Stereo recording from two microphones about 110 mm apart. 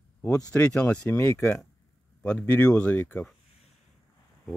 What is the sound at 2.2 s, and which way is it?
Speech, 10° left (ahead or behind).